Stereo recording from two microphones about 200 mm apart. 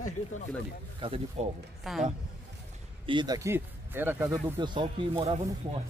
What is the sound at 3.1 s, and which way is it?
Speech, 20° right (ahead or behind).